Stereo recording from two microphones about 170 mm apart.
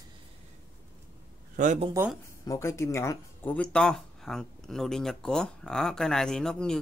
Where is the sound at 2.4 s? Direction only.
20° left (ahead or behind).